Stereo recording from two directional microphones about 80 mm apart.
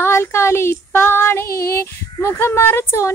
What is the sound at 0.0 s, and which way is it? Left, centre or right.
Child singing, left.